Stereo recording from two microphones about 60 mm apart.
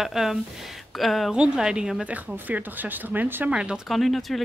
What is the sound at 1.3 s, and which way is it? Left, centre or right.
Speech, centre.